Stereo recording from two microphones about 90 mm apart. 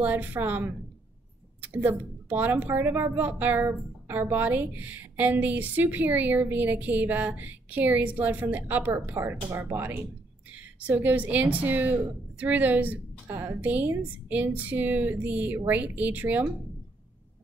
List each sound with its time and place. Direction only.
0.0 s a woman's voice: 20° right (ahead or behind)